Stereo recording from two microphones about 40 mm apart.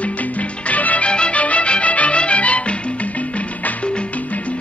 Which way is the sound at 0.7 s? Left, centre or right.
Left.